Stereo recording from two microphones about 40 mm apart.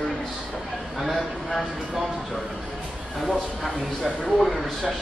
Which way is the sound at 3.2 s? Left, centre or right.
Centre.